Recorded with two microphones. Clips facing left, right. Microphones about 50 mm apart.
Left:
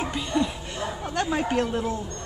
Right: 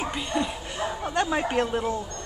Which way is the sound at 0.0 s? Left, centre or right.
Centre.